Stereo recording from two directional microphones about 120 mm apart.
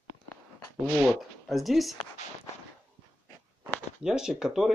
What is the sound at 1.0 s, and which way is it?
Speech, centre (ahead or behind).